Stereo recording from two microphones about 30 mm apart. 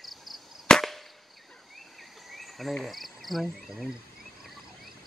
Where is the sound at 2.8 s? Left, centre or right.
Centre.